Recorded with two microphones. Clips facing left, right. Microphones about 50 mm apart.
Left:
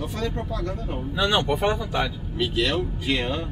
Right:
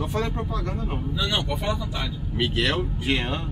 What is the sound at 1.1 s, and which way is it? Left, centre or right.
Speech, left.